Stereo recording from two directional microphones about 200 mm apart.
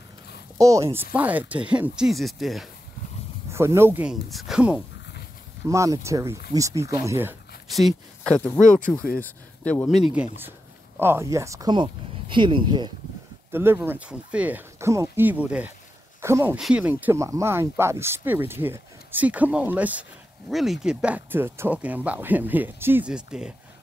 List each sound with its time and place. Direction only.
0.6 s speech: 15° right (ahead or behind); by 2.7 s centre (ahead or behind)
3.5 s speech: 15° right (ahead or behind)
5.7 s speech: 15° right (ahead or behind)
7.7 s speech: centre (ahead or behind)
11.0 s speech: 10° right (ahead or behind)
13.5 s speech: 10° right (ahead or behind)